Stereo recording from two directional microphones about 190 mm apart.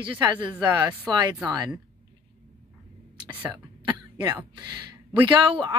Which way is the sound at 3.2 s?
10° right (ahead or behind).